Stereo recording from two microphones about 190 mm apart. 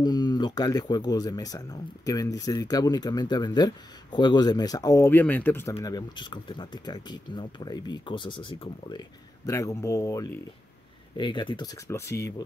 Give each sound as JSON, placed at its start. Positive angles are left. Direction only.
{"t": 0.0, "sound": "speech", "side_deg": 20}